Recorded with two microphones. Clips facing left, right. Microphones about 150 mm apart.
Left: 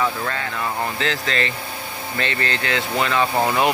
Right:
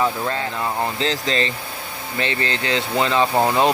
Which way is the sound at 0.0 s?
25° right (ahead or behind).